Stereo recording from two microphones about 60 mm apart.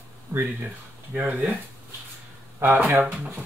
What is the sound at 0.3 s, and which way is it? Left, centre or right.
Speech, right.